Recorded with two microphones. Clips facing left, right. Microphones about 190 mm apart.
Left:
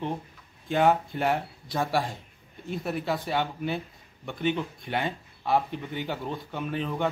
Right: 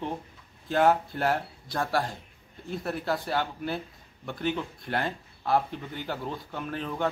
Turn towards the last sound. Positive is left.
turn(degrees=0)  # may be behind; listen again after turning